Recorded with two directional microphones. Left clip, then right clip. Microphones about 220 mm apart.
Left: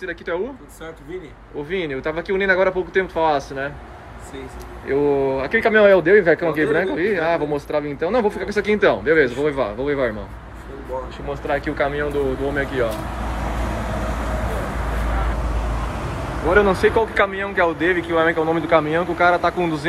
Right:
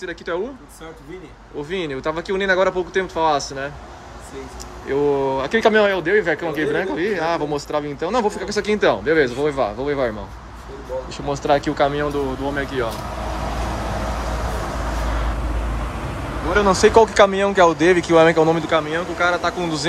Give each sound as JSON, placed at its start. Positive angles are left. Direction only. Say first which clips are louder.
{"t": 0.0, "sound": "a man's voice", "louder": "even", "side_deg": -10}
{"t": 1.7, "sound": "a man's voice", "louder": "even", "side_deg": -10}
{"t": 4.8, "sound": "a man's voice", "louder": "even", "side_deg": -10}
{"t": 5.8, "sound": "a man's voice", "louder": "left 4 dB", "side_deg": 0}
{"t": 11.2, "sound": "a man's voice", "louder": "right 5 dB", "side_deg": -20}
{"t": 15.3, "sound": "vehicle", "louder": "left 1 dB", "side_deg": 0}
{"t": 16.6, "sound": "a man's voice", "louder": "right 4 dB", "side_deg": -15}